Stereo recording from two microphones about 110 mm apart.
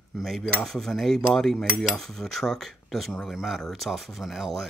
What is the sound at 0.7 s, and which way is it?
Speech, 5° left (ahead or behind).